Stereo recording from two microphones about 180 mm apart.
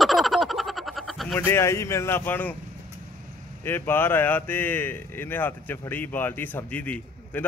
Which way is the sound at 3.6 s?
10° left (ahead or behind).